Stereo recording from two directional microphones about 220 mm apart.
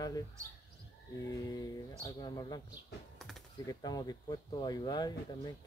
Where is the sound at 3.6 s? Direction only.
15° left (ahead or behind).